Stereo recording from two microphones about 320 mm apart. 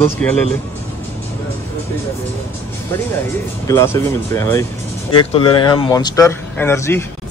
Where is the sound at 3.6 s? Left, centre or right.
Centre.